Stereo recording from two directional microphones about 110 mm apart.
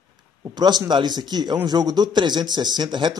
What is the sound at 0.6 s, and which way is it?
Speech, 40° right (ahead or behind).